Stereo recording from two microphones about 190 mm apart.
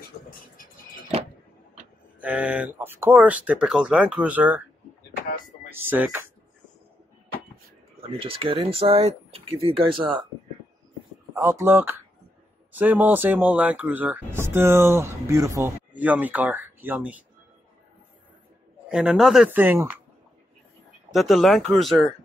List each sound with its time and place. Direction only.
2.1 s speech: 5° right (ahead or behind)
5.7 s speech: 10° right (ahead or behind)
8.1 s speech: 30° right (ahead or behind)
11.3 s speech: 15° right (ahead or behind)
18.9 s speech: 5° right (ahead or behind)
21.1 s speech: centre (ahead or behind)